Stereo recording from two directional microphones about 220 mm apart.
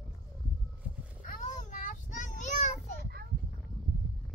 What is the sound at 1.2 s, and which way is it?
Child singing, 35° left (ahead or behind).